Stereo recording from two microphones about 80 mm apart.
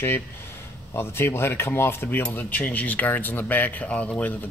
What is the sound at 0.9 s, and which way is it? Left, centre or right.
Speech, left.